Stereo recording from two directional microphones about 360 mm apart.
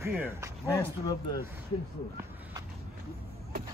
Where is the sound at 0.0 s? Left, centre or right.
Centre.